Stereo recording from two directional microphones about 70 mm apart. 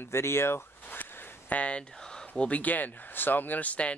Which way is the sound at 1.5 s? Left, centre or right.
Centre.